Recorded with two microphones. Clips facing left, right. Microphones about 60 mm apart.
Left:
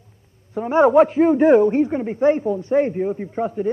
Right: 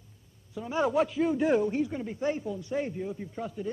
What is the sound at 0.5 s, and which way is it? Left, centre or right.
A man's voice, left.